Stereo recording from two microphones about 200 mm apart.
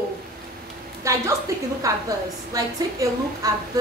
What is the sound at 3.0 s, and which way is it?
Speech, 15° right (ahead or behind).